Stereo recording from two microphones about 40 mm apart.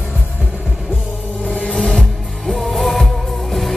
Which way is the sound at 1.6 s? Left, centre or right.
Centre.